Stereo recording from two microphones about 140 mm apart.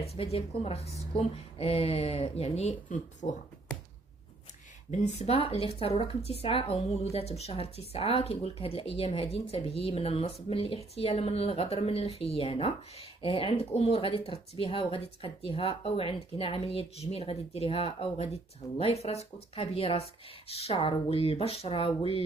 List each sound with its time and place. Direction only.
0.0 s speech: 45° left (ahead or behind)
2.9 s speech: 60° left (ahead or behind)
4.9 s speech: 55° left (ahead or behind)